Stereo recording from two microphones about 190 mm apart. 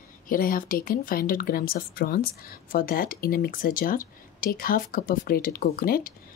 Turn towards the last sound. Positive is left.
turn(degrees=50)  # may be behind; listen again after turning